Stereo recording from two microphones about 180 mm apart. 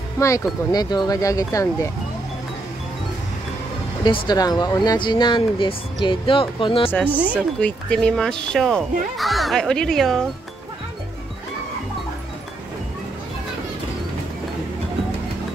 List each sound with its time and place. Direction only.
0.2 s speech: 15° left (ahead or behind)
4.0 s speech: 25° left (ahead or behind)
6.9 s speech: 10° left (ahead or behind)